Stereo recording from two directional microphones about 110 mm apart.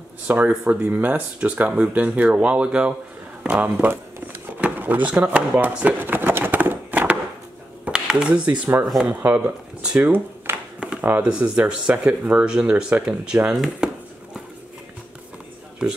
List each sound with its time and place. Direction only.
0.3 s speech: 15° right (ahead or behind)
4.6 s drawer open or close: 15° right (ahead or behind)
5.2 s a sound: 10° right (ahead or behind)
9.1 s speech: 15° right (ahead or behind)
13.8 s chopping: 5° right (ahead or behind)